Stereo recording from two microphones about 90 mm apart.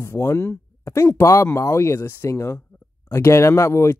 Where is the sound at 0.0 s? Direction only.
30° left (ahead or behind).